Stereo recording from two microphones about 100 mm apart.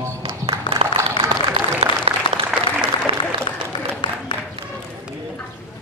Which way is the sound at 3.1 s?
65° right (ahead or behind).